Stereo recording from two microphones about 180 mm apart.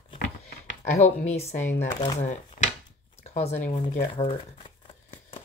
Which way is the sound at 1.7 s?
35° left (ahead or behind).